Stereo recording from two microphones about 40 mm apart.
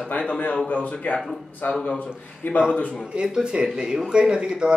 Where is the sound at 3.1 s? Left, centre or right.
Right.